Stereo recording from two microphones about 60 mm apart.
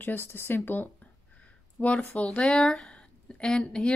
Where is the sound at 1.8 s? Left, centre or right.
Left.